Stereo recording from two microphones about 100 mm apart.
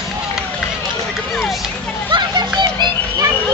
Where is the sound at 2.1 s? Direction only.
50° right (ahead or behind).